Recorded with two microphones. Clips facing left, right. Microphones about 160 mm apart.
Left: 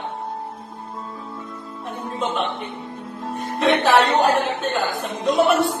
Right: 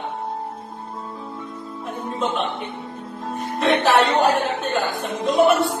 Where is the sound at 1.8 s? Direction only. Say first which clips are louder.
Right 1 dB; centre (ahead or behind).